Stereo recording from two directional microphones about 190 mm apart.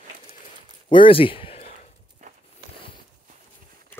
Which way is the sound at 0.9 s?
25° left (ahead or behind).